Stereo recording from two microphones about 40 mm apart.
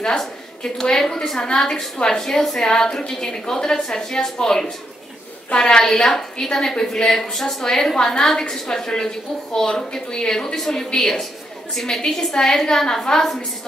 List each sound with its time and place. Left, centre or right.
0.7 s a woman's voice: centre